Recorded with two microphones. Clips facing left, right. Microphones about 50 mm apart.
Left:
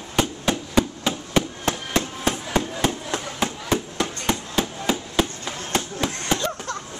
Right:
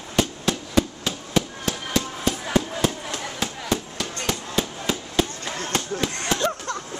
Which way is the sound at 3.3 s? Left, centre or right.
Left.